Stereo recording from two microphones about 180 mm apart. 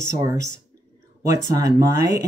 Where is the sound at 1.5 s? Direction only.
20° right (ahead or behind).